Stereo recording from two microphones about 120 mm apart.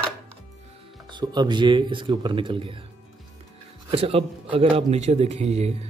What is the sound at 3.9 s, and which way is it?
Speech, 55° right (ahead or behind).